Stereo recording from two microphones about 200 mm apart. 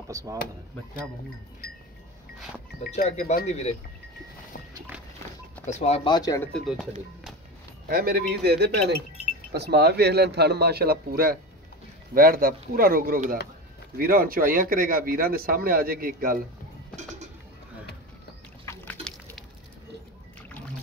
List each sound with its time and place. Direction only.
0.1 s speech: 15° right (ahead or behind)
1.6 s livestock: 50° left (ahead or behind)
3.0 s speech: 35° left (ahead or behind)
5.7 s speech: 35° left (ahead or behind); by 6.5 s 15° left (ahead or behind)
7.9 s a man's voice: 50° right (ahead or behind)
18.7 s a sound: 5° left (ahead or behind)